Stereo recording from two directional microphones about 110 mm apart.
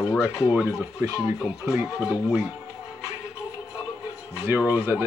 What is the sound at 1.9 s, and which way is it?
Speech, 5° right (ahead or behind).